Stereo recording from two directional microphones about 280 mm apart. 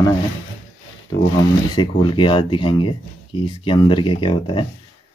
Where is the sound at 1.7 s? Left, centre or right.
Centre.